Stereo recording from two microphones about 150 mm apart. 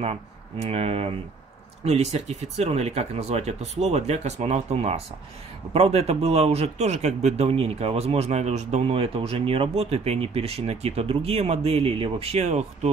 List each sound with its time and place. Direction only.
0.0 s speech: 45° right (ahead or behind)